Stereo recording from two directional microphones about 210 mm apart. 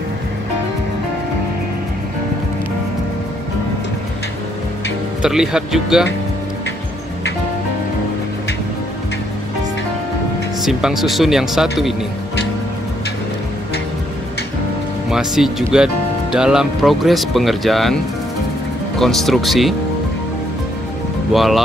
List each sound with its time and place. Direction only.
5.2 s speech: 5° right (ahead or behind)
10.6 s speech: centre (ahead or behind)
15.0 s speech: centre (ahead or behind)
18.9 s speech: centre (ahead or behind)
21.3 s speech: centre (ahead or behind)